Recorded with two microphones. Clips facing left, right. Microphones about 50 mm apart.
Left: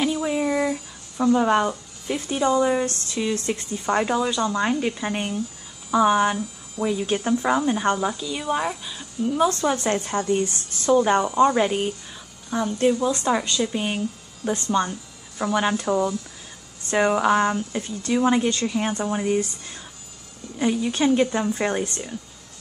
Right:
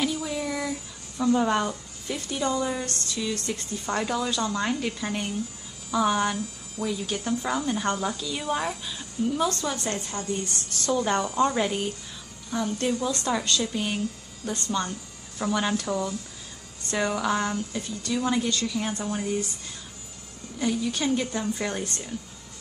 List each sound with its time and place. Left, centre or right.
0.0 s a sound: left
3.4 s speech: left
5.9 s speech: centre
9.4 s a woman's voice: left
10.4 s a woman's voice: left
20.5 s speech: left